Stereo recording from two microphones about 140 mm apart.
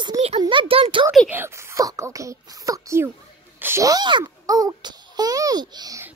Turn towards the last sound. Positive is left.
turn(degrees=-30)  # may be behind; listen again after turning